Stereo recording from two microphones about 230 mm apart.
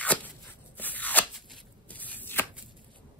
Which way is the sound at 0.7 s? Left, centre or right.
Centre.